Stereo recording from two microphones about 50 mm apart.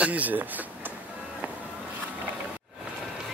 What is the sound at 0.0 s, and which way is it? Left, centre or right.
Speech, right.